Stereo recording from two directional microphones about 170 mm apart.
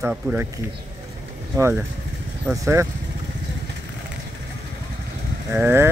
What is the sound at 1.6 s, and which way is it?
Speech, 15° right (ahead or behind).